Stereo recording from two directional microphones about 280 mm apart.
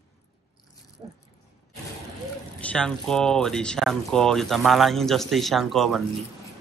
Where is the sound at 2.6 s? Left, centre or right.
Centre.